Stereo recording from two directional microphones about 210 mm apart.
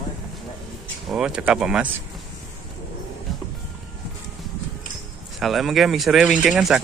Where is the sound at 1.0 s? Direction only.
5° right (ahead or behind).